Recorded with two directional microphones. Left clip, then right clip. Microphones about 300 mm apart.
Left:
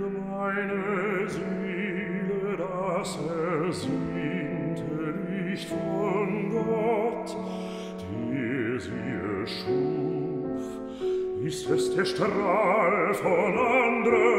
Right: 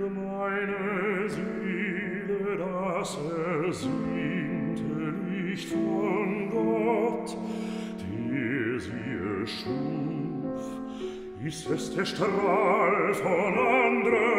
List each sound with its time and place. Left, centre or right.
0.4 s music: centre
2.4 s music: centre
6.0 s music: centre
8.5 s music: centre
11.7 s music: centre